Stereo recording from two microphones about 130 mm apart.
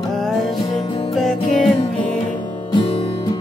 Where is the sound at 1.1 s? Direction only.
Centre (ahead or behind).